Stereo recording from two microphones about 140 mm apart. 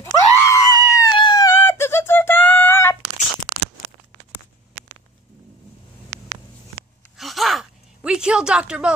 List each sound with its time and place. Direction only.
0.0 s screaming: 25° left (ahead or behind)
1.6 s a sound: 20° left (ahead or behind)
7.2 s gasp: centre (ahead or behind)